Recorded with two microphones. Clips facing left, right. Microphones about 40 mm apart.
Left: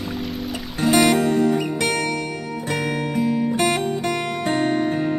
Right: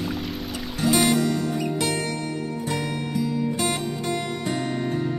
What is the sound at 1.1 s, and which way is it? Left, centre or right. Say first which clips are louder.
Music: left 5 dB; left.